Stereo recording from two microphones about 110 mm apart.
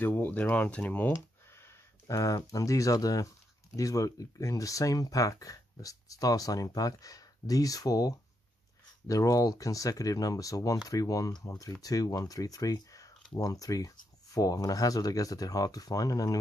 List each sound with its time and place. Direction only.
0.0 s speech: 20° left (ahead or behind)